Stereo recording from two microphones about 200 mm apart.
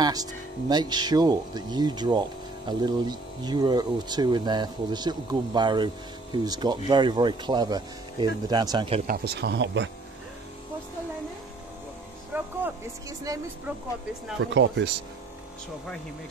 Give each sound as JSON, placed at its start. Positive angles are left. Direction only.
{"t": 0.0, "sound": "speech", "side_deg": -20}
{"t": 9.0, "sound": "speech", "side_deg": -50}
{"t": 12.3, "sound": "music", "side_deg": -10}
{"t": 13.2, "sound": "speech", "side_deg": -15}
{"t": 14.5, "sound": "speech", "side_deg": -65}